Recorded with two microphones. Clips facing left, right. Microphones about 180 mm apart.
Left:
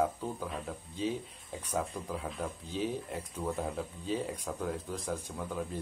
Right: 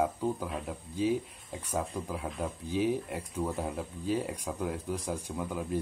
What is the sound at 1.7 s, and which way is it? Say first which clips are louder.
Speech: right 1 dB; 10° right (ahead or behind).